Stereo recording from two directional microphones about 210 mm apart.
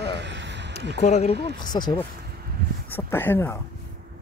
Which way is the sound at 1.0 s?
30° left (ahead or behind).